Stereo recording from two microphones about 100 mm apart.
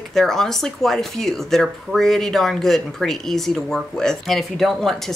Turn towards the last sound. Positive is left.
turn(degrees=0)  # may be behind; listen again after turning